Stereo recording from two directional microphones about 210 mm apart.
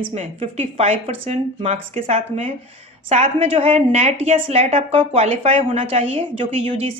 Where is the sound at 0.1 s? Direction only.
30° right (ahead or behind).